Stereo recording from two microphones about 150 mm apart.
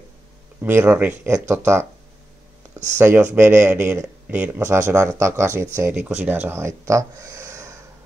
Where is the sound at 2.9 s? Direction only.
15° right (ahead or behind).